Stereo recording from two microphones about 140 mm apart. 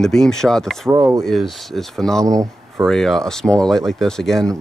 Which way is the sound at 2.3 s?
25° right (ahead or behind).